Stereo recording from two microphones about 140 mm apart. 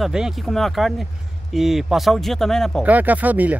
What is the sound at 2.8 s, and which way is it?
Speech, 10° right (ahead or behind).